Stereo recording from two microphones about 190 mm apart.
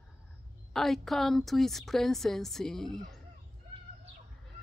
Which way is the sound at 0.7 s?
Centre (ahead or behind).